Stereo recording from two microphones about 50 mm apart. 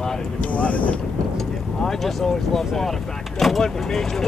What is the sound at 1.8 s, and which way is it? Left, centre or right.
Speech, centre.